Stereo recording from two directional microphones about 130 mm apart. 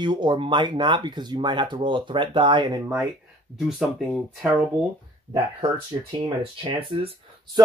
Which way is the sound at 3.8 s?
5° right (ahead or behind).